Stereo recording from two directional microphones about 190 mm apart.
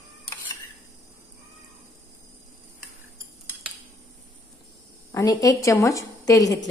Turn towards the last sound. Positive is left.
turn(degrees=15)  # may be behind; listen again after turning